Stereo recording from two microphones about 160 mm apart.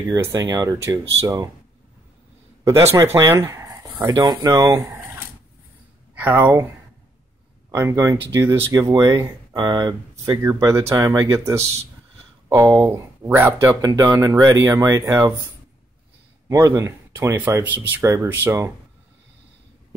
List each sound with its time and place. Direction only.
0.1 s speech: 20° right (ahead or behind)
2.9 s speech: 15° right (ahead or behind)
6.1 s speech: 10° right (ahead or behind)
7.7 s speech: 15° right (ahead or behind)
16.4 s speech: 15° right (ahead or behind)